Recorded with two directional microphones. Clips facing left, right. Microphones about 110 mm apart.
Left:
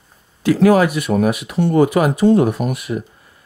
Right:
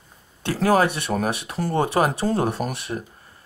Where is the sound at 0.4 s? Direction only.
30° right (ahead or behind).